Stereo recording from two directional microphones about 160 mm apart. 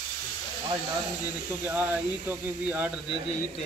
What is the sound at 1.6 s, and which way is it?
Speech, 10° right (ahead or behind).